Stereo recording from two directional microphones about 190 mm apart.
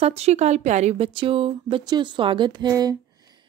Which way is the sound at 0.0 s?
35° right (ahead or behind).